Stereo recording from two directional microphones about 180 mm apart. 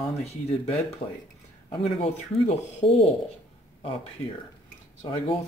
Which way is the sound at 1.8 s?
35° left (ahead or behind).